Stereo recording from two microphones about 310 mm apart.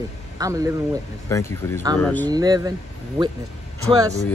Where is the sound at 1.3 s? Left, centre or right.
Centre.